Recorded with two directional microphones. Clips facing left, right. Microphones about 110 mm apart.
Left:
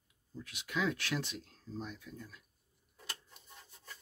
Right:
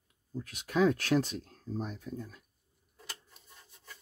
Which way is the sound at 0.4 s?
45° right (ahead or behind).